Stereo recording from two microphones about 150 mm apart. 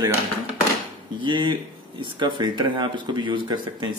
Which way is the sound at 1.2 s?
30° right (ahead or behind).